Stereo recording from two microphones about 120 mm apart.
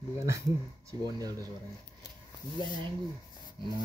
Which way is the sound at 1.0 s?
30° right (ahead or behind).